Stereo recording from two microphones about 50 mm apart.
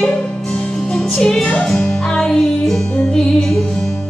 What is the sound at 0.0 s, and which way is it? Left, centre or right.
Music, centre.